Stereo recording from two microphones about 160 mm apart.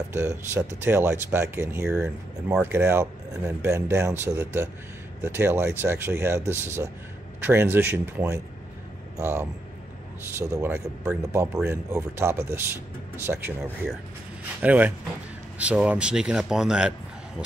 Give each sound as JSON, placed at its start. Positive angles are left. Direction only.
{"t": 0.1, "sound": "speech", "side_deg": -15}
{"t": 14.6, "sound": "speech", "side_deg": -10}